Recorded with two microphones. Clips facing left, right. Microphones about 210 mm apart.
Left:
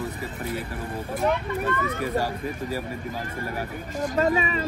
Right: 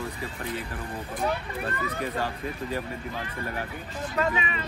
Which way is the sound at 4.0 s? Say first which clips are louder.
Left 5 dB; 40° left (ahead or behind).